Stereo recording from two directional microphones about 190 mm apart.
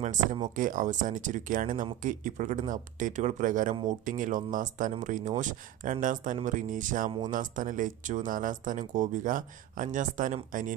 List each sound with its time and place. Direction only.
0.6 s speech: 45° right (ahead or behind)